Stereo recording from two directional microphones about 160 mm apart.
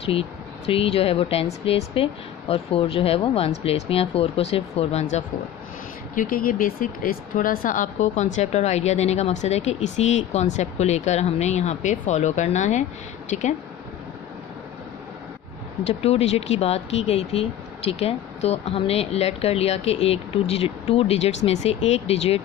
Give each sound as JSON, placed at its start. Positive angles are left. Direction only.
{"t": 0.0, "sound": "speech", "side_deg": 35}
{"t": 6.1, "sound": "speech", "side_deg": 60}
{"t": 15.8, "sound": "speech", "side_deg": 40}